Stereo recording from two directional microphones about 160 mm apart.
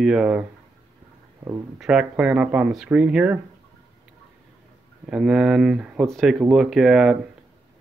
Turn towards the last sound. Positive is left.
turn(degrees=0)  # may be behind; listen again after turning